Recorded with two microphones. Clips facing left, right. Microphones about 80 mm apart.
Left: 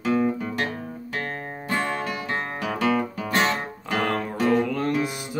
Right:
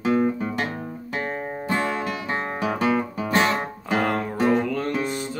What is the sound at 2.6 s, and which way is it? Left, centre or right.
Music, right.